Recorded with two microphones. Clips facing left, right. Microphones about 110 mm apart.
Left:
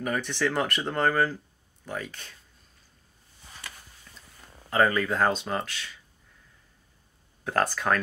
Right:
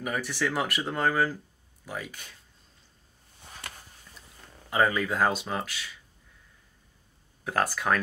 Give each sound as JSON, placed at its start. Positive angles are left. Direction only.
{"t": 0.0, "sound": "speech", "side_deg": -5}
{"t": 3.6, "sound": "a sound", "side_deg": -60}
{"t": 4.6, "sound": "speech", "side_deg": -10}
{"t": 7.4, "sound": "speech", "side_deg": -10}